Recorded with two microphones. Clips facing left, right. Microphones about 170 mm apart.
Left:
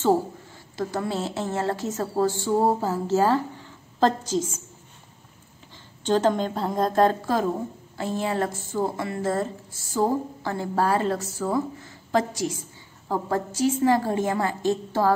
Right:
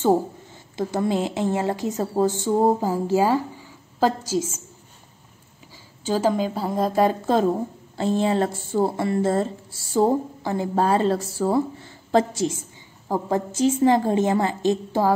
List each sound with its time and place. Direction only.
0.7 s a woman's voice: 20° right (ahead or behind)
6.0 s a woman's voice: 5° right (ahead or behind)
8.0 s a woman's voice: 25° right (ahead or behind)
10.4 s a woman's voice: 20° right (ahead or behind)